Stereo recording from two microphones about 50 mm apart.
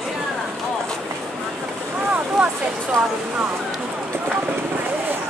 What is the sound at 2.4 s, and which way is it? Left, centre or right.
Speech, centre.